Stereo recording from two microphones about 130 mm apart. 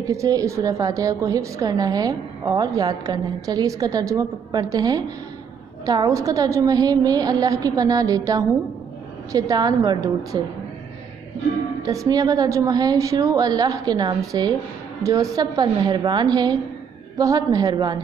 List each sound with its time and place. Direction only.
0.1 s a woman's voice: 25° right (ahead or behind)
11.8 s a woman's voice: 25° right (ahead or behind)